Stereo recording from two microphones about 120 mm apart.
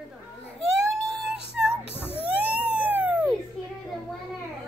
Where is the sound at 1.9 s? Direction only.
15° left (ahead or behind).